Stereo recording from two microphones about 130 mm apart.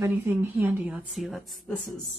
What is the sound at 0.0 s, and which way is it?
A woman's voice, 20° right (ahead or behind).